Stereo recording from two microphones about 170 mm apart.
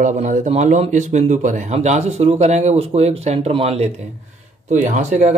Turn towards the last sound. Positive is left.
turn(degrees=-45)  # may be behind; listen again after turning